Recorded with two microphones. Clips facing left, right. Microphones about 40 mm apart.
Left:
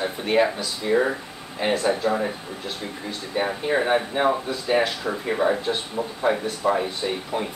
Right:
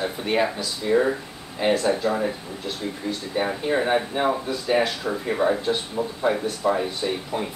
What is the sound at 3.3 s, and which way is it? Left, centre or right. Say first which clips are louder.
Speech: left 1 dB; centre.